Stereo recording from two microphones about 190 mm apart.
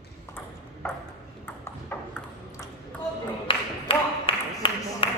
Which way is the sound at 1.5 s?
10° left (ahead or behind).